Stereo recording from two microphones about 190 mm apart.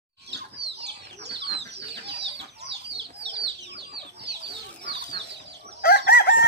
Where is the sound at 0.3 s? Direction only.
65° right (ahead or behind).